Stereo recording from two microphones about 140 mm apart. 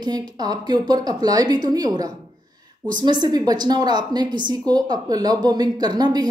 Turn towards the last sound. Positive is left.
turn(degrees=-30)  # may be behind; listen again after turning